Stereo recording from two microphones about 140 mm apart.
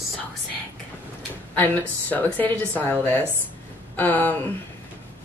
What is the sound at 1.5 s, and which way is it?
Speech, 10° left (ahead or behind).